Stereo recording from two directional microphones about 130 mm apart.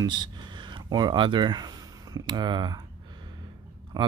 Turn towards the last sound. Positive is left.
turn(degrees=-30)  # may be behind; listen again after turning